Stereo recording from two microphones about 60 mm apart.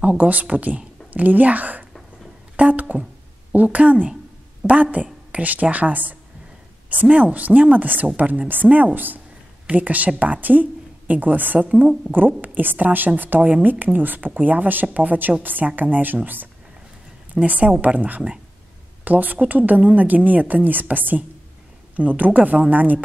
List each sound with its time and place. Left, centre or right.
0.0 s a woman's voice: right
11.7 s speech: centre
12.1 s a woman's voice: right
17.3 s a woman's voice: right